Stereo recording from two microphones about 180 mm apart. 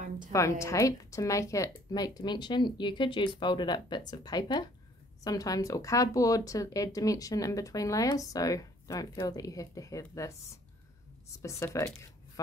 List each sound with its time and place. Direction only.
0.3 s speech: 15° left (ahead or behind)